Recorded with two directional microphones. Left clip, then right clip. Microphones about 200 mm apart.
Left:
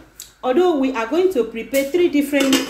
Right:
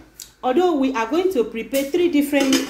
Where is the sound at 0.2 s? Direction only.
15° right (ahead or behind).